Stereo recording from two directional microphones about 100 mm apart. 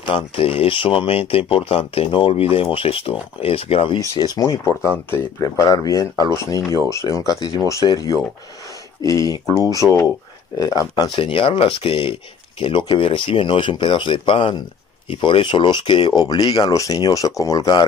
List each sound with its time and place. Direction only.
0.0 s speech: 70° left (ahead or behind)
4.0 s speech: 40° left (ahead or behind)
11.1 s speech: 55° left (ahead or behind); by 12.0 s 80° left
12.0 s speech: 60° left (ahead or behind); by 17.8 s 40° left (ahead or behind)